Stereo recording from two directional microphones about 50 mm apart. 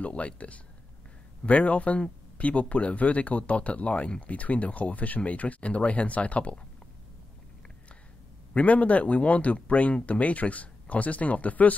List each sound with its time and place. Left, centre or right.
0.0 s speech: left
2.3 s a sound: left
2.7 s speech: left
8.5 s speech: left